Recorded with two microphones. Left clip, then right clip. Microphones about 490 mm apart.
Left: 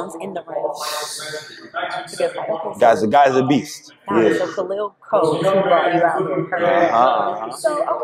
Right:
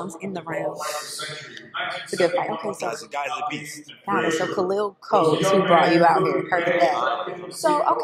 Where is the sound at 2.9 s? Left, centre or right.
Left.